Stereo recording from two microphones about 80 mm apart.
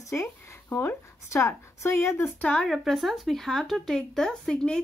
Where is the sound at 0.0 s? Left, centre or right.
Left.